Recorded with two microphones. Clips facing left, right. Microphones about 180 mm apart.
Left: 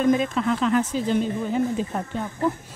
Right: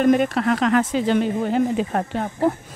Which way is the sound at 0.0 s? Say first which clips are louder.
Right 3 dB; 65° right (ahead or behind).